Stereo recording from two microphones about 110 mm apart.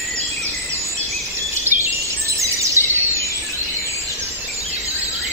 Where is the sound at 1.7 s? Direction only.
20° right (ahead or behind).